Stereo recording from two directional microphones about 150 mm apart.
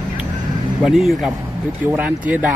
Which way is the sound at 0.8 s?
Centre (ahead or behind).